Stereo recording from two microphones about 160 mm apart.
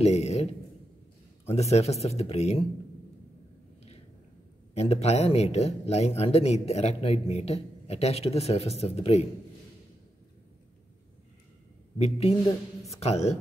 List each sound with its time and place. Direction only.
0.0 s speech: 40° left (ahead or behind)
4.7 s speech: 40° left (ahead or behind)
12.0 s speech: 40° left (ahead or behind)